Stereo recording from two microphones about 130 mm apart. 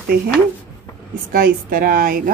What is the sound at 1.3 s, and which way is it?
A woman's voice, 90° right.